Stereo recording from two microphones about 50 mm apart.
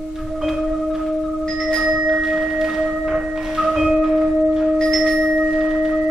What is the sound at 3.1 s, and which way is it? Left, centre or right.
Music, centre.